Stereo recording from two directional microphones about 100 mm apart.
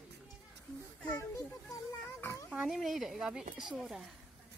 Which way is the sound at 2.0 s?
25° left (ahead or behind).